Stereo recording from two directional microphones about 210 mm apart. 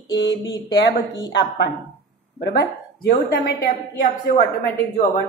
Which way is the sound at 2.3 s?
50° left (ahead or behind).